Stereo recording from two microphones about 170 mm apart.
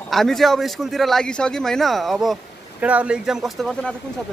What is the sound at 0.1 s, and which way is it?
Speech, centre (ahead or behind).